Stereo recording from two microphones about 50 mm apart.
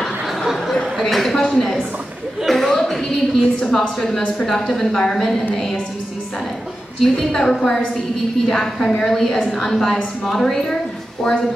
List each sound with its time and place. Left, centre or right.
0.7 s a sound: centre
3.3 s a woman's voice: centre
7.0 s a woman's voice: centre